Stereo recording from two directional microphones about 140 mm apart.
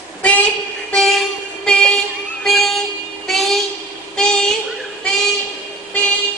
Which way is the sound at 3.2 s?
Centre (ahead or behind).